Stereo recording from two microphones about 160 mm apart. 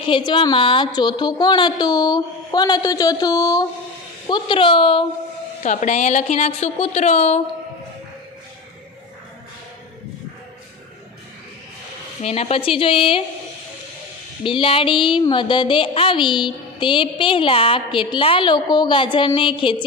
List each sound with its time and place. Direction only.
0.0 s a woman's voice: 30° left (ahead or behind)
5.6 s a woman's voice: 50° left (ahead or behind)
12.2 s speech: 40° left (ahead or behind)
14.4 s speech: 35° left (ahead or behind)